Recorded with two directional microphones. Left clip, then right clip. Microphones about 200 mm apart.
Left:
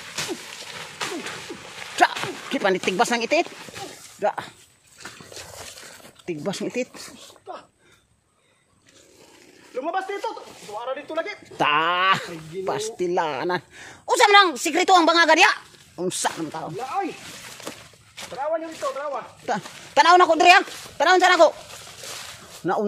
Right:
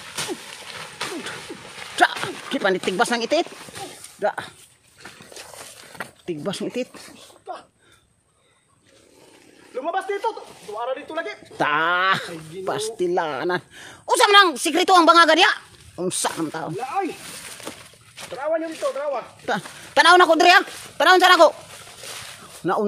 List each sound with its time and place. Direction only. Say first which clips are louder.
1.0 s a sound: even; 10° left (ahead or behind)
1.8 s dog: right 1 dB; centre (ahead or behind)
4.2 s speech: even; 5° right (ahead or behind)
5.0 s dog: left 2 dB; 55° left (ahead or behind)
6.2 s speech: even; centre (ahead or behind)
9.8 s a sound: right 2 dB; 15° right (ahead or behind)
10.8 s speech: right 1 dB; 15° right (ahead or behind)
11.5 s speech: even; 5° right (ahead or behind)
16.7 s speech: right 1 dB; 60° right (ahead or behind)
17.6 s a sound: even; 15° left (ahead or behind)
18.3 s a sound: right 2 dB; 50° right (ahead or behind)
19.4 s a woman's voice: right 1 dB; 20° right (ahead or behind)
22.6 s speech: right 1 dB; 10° right (ahead or behind)